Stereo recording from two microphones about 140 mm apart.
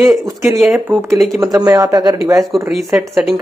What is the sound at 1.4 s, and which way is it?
Speech, 25° right (ahead or behind).